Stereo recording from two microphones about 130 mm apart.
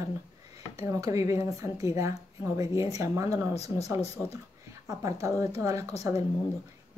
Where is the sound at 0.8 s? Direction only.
25° right (ahead or behind).